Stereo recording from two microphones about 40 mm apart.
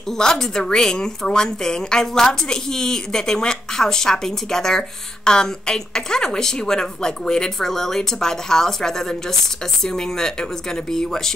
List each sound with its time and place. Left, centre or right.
0.2 s a woman's voice: centre